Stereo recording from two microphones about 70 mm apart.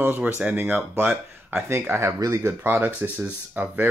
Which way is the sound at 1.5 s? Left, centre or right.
Right.